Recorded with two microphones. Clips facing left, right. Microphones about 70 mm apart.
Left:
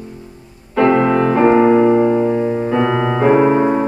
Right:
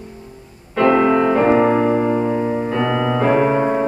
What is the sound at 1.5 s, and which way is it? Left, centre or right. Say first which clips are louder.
Piano: left 4 dB; centre.